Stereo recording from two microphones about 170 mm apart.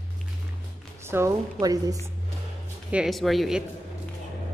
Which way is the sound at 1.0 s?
15° right (ahead or behind).